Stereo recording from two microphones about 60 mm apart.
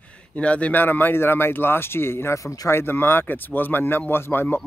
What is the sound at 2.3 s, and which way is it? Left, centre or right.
Speech, left.